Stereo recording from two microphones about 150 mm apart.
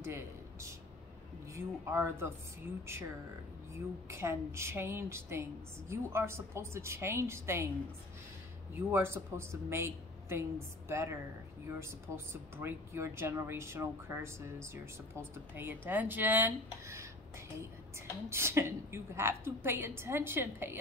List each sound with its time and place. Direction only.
0.0 s a sound: 20° right (ahead or behind)
1.5 s speech: 15° right (ahead or behind)
8.7 s a woman's voice: 15° right (ahead or behind)